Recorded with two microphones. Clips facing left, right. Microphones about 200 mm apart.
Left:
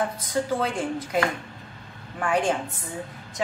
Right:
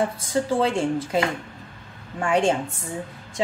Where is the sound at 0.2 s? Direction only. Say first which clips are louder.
Right 4 dB; 25° right (ahead or behind).